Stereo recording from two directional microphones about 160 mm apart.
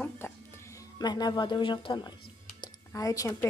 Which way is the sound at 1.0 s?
25° left (ahead or behind).